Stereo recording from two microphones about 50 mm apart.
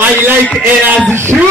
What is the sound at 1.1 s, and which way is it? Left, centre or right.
Speech, right.